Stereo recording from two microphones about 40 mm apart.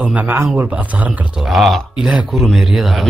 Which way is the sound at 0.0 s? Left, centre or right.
Right.